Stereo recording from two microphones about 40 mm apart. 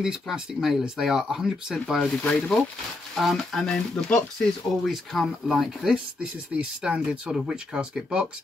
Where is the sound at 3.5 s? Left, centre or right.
Centre.